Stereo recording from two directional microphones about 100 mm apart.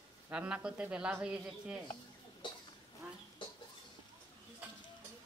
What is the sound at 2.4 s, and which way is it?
Cough, 50° left (ahead or behind).